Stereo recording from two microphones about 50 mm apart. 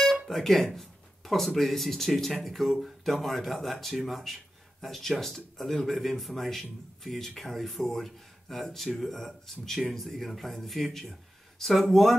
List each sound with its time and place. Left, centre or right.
0.3 s speech: centre